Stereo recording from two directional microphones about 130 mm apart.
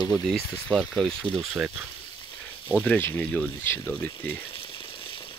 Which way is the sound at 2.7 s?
10° left (ahead or behind).